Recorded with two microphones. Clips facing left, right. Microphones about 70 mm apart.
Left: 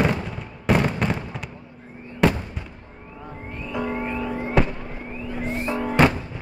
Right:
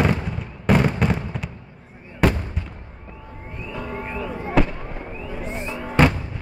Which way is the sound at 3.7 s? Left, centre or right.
Left.